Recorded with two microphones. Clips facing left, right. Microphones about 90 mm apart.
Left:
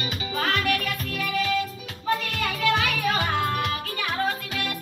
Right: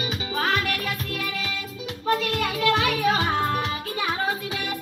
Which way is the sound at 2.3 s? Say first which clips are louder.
Right 2 dB; 10° right (ahead or behind).